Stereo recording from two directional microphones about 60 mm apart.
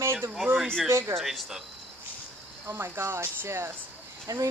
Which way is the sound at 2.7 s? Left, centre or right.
Right.